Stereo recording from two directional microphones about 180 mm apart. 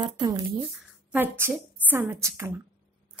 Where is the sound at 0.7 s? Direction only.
10° right (ahead or behind).